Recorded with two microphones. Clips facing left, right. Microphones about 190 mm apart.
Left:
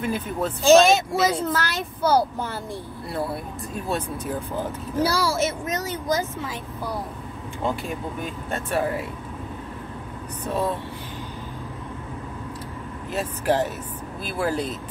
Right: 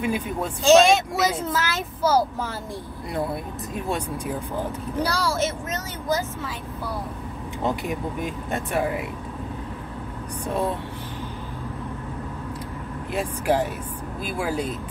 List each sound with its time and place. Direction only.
0.0 s speech: 10° right (ahead or behind)
0.7 s a child's voice: centre (ahead or behind)
4.9 s speech: 5° left (ahead or behind)
7.6 s speech: 15° right (ahead or behind)
10.4 s speech: 15° right (ahead or behind)
13.1 s speech: 10° right (ahead or behind)